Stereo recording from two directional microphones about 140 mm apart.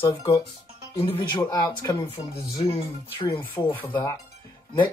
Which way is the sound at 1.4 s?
25° left (ahead or behind).